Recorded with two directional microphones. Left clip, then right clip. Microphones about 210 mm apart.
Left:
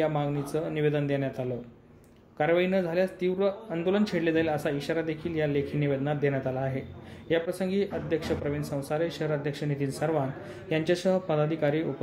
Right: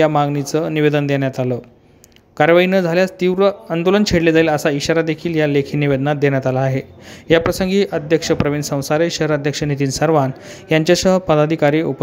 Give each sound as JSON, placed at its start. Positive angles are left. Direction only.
{"t": 0.0, "sound": "speech", "side_deg": -50}